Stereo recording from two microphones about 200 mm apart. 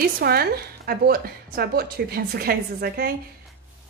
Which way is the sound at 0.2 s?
50° right (ahead or behind).